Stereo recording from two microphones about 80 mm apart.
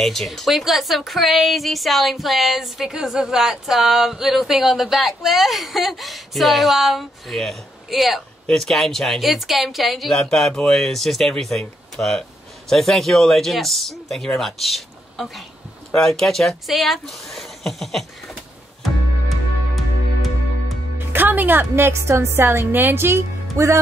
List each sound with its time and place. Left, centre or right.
0.0 s a woman's voice: centre
18.8 s music: centre
21.1 s a woman's voice: right